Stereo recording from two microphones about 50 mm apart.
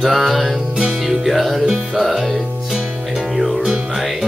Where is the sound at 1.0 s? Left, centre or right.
Centre.